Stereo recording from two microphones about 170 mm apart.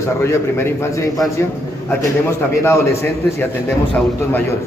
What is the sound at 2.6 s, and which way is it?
Speech, 15° left (ahead or behind).